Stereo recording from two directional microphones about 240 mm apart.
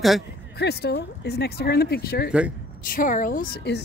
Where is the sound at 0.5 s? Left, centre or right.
Left.